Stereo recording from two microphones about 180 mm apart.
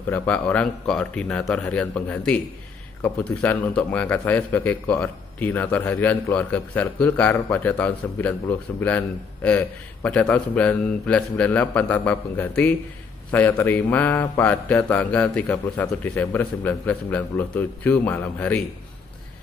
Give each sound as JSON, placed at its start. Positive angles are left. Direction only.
{"t": 0.1, "sound": "speech", "side_deg": 10}